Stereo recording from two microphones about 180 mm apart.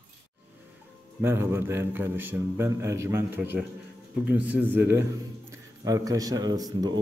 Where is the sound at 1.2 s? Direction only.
15° right (ahead or behind).